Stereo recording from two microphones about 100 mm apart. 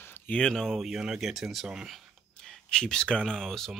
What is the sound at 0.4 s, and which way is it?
Speech, 5° left (ahead or behind).